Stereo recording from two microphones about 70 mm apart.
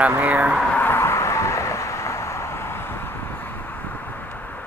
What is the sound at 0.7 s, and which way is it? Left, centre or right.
Vehicle, left.